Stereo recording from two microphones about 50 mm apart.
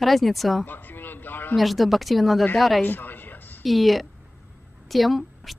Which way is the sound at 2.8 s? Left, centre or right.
Left.